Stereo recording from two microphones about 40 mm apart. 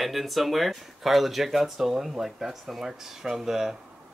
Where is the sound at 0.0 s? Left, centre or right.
Centre.